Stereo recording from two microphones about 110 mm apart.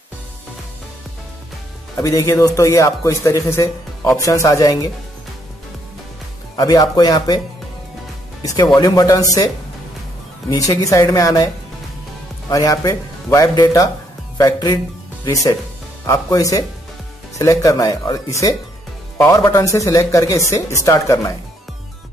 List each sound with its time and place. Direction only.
2.0 s a man's voice: 30° left (ahead or behind)
6.5 s speech: 35° left (ahead or behind)
8.7 s speech: 35° left (ahead or behind)
10.6 s speech: 30° left (ahead or behind)
16.1 s a man's voice: 30° left (ahead or behind)